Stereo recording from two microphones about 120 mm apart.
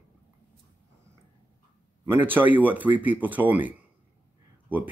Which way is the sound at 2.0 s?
15° right (ahead or behind).